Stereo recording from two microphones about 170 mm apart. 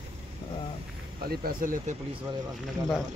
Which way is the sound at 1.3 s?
60° right (ahead or behind).